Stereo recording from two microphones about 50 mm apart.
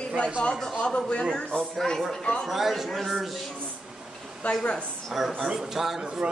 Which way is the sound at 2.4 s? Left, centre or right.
Centre.